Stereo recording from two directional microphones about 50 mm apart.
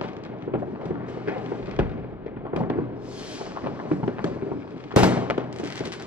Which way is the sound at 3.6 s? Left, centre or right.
Right.